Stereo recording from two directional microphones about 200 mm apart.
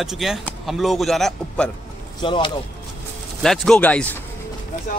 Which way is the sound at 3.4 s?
Centre (ahead or behind).